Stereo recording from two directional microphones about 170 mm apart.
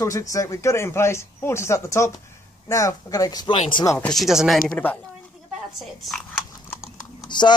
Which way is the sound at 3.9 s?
5° left (ahead or behind).